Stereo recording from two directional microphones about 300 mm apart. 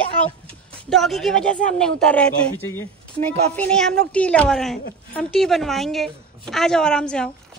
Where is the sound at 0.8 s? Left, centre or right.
Centre.